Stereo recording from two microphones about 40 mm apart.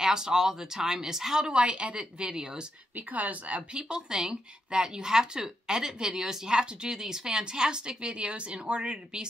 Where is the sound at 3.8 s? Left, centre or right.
Centre.